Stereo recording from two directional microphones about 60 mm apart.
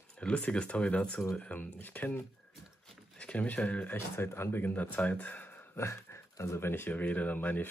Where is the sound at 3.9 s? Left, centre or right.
Left.